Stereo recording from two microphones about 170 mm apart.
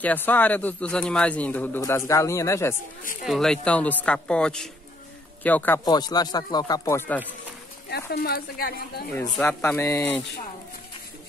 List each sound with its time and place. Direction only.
0.0 s a man's voice: 10° left (ahead or behind)
3.3 s a man's voice: 5° left (ahead or behind)
5.9 s speech: 25° left (ahead or behind)
7.9 s speech: 70° left (ahead or behind)
9.5 s a man's voice: 15° left (ahead or behind)